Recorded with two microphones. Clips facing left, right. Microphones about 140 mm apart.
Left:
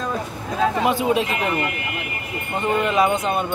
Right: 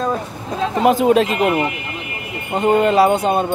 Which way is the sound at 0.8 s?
50° right (ahead or behind).